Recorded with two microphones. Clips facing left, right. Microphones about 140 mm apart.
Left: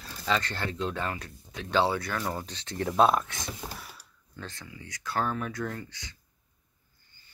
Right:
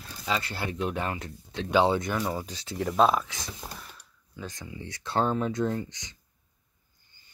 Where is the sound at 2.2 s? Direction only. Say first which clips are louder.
Right 2 dB; 10° right (ahead or behind).